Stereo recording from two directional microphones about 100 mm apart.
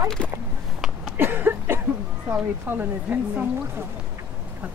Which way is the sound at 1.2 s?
20° right (ahead or behind).